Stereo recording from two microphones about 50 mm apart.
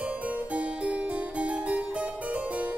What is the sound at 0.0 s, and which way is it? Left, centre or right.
Harpsichord, right.